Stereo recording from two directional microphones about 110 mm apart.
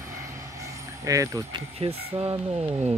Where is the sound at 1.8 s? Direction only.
60° right (ahead or behind).